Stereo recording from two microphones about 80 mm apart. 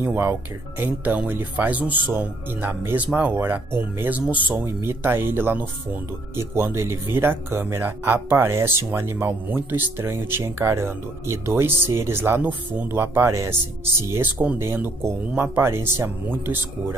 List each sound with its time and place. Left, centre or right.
0.0 s speech: right
14.1 s speech: centre
14.6 s speech: right